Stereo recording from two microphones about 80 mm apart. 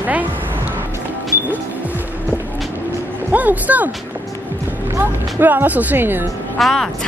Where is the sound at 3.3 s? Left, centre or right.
Centre.